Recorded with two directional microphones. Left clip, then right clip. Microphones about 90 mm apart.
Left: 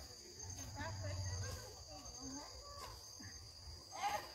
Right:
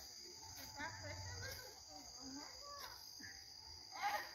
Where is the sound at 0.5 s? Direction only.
25° left (ahead or behind).